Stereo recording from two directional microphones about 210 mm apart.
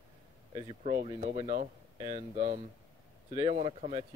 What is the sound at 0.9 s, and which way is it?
Speech, 35° right (ahead or behind).